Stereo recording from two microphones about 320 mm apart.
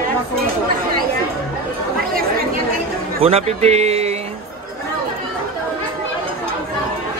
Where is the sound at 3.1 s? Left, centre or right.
Centre.